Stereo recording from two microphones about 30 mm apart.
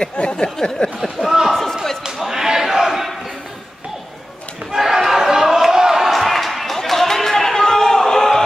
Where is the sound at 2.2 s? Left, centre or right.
Centre.